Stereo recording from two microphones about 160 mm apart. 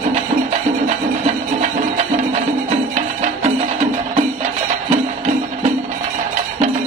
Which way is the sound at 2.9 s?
40° right (ahead or behind).